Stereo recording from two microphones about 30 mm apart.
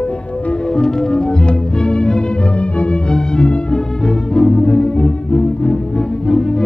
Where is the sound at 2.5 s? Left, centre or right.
Left.